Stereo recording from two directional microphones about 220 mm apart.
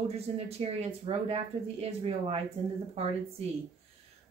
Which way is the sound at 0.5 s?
30° right (ahead or behind).